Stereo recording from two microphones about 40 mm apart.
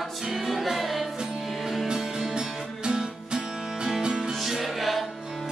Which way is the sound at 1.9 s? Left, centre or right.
Centre.